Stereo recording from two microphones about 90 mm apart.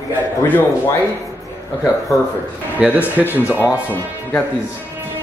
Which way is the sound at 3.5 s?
20° left (ahead or behind).